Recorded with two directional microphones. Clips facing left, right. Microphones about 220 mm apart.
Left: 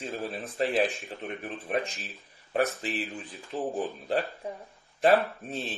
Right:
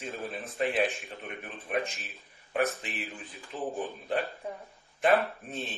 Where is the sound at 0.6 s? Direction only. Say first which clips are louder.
Left 2 dB; 35° left (ahead or behind).